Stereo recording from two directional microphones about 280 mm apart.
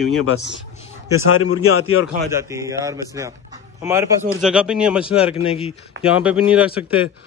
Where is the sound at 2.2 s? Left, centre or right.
Centre.